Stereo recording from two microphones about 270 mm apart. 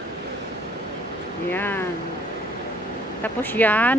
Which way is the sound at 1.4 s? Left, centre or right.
Centre.